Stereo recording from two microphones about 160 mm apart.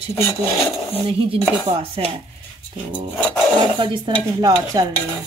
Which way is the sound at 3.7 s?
30° right (ahead or behind).